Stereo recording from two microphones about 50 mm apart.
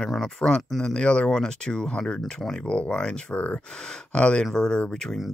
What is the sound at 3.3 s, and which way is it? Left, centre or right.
Speech, left.